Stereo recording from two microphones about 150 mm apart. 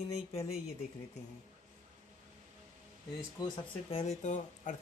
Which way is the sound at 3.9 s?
45° left (ahead or behind).